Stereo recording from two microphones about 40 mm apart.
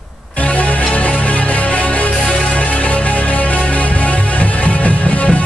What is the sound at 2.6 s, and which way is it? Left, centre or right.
Music, left.